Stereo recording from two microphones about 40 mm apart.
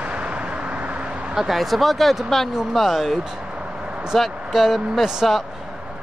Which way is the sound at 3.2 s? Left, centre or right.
Right.